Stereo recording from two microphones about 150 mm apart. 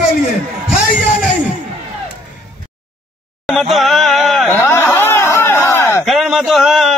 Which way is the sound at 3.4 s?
Centre (ahead or behind).